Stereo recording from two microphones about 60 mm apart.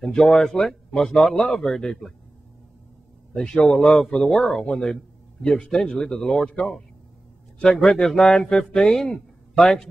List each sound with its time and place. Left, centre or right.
0.0 s a man's voice: centre
3.3 s speech: centre
7.5 s a man's voice: centre
7.8 s speech: centre